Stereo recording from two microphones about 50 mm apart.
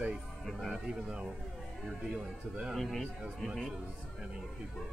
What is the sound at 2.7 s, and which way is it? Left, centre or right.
Speech, centre.